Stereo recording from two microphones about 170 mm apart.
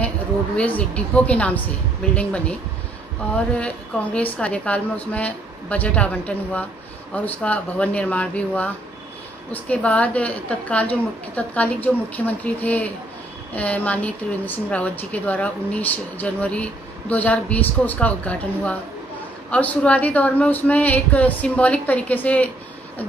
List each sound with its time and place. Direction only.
0.6 s a woman's voice: 10° left (ahead or behind)
3.5 s a woman's voice: 5° left (ahead or behind)